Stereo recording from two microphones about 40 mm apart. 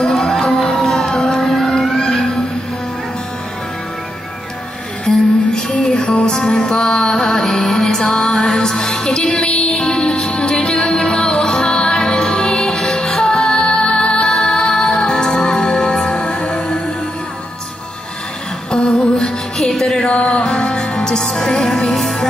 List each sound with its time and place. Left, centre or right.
0.0 s music: centre
1.5 s a sound: centre
2.0 s music: centre
5.0 s music: centre
5.8 s music: left
6.3 s music: centre
18.7 s music: left
19.7 s music: centre
20.0 s music: left
20.4 s music: centre